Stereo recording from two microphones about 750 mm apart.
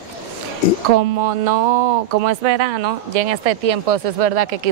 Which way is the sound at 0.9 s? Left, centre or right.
Right.